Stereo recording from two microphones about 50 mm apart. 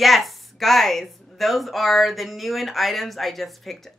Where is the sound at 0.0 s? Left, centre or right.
Centre.